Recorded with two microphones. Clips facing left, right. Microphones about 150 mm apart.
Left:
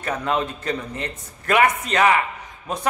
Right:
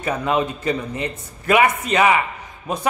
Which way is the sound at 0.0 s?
5° right (ahead or behind).